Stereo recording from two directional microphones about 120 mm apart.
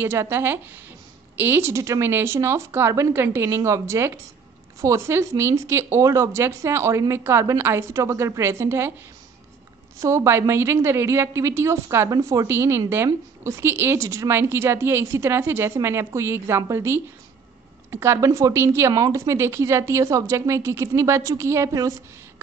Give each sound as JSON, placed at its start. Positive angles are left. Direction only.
{"t": 0.0, "sound": "a woman's voice", "side_deg": -20}
{"t": 9.9, "sound": "a woman's voice", "side_deg": -25}